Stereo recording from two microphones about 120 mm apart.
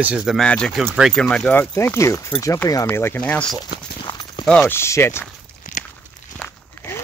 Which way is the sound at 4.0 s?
45° left (ahead or behind).